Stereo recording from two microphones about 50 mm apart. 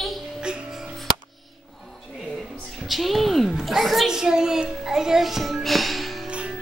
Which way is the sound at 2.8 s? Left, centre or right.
Centre.